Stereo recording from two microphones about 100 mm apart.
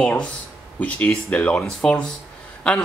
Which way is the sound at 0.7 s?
15° left (ahead or behind).